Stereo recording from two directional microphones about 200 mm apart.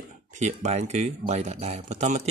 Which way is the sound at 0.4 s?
35° right (ahead or behind).